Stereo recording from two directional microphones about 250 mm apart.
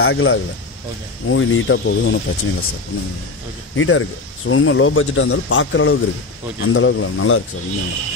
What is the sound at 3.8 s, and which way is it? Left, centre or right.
Speech, left.